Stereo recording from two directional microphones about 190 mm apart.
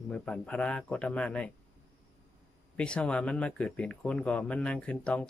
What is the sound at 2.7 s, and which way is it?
Speech, 5° left (ahead or behind).